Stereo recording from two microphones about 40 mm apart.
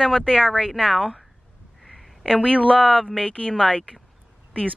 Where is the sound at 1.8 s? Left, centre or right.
Centre.